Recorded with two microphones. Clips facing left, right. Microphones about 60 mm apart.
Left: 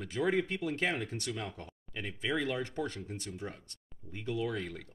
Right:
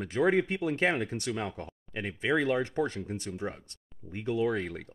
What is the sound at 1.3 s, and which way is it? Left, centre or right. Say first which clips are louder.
Speech: right 6 dB; right.